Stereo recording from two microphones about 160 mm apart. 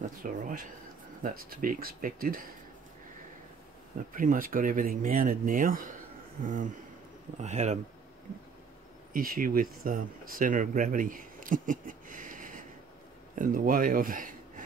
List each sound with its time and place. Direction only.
0.2 s speech: 55° right (ahead or behind)
4.1 s speech: 60° right (ahead or behind)
9.1 s speech: 60° right (ahead or behind)